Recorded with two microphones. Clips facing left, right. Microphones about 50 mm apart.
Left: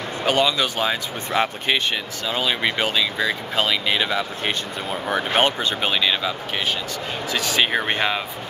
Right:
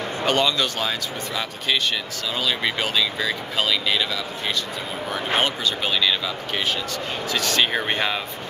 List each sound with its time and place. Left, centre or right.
0.2 s speech: centre
1.3 s speech: left
2.2 s speech: left
7.2 s speech: centre